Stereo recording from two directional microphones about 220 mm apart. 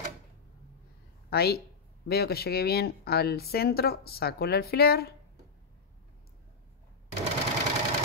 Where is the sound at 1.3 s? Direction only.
45° left (ahead or behind).